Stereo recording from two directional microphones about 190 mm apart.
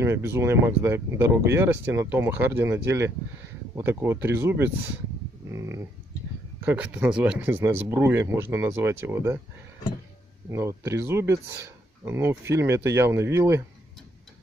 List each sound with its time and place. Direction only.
0.0 s speech: 15° right (ahead or behind)
5.5 s dog: 15° right (ahead or behind)
6.6 s speech: 10° right (ahead or behind)
10.5 s speech: 15° right (ahead or behind)